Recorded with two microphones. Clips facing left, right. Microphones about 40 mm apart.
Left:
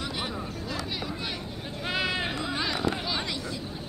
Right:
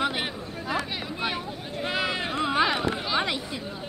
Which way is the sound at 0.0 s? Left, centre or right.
Right.